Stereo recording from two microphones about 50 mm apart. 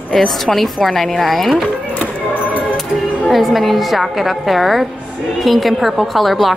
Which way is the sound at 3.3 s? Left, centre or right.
Centre.